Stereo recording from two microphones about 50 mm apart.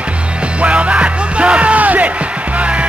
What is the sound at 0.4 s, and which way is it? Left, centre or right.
Music, right.